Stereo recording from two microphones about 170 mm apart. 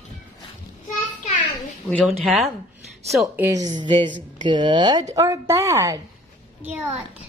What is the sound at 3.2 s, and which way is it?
A child's voice, 15° right (ahead or behind).